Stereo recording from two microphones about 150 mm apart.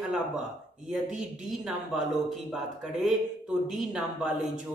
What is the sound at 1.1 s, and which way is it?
Speech, 5° right (ahead or behind).